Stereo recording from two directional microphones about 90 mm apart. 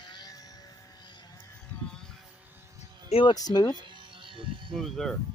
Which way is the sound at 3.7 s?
60° right (ahead or behind).